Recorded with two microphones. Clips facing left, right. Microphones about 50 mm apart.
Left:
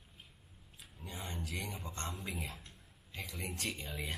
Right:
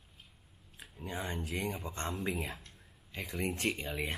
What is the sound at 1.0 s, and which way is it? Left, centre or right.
Speech, right.